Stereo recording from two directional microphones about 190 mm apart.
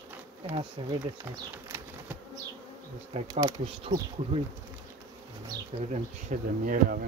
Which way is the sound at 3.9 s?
40° right (ahead or behind).